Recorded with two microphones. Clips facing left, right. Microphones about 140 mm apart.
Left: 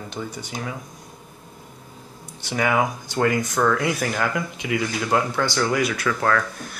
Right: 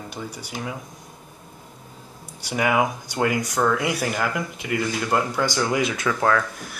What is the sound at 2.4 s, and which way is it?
Speech, 10° right (ahead or behind).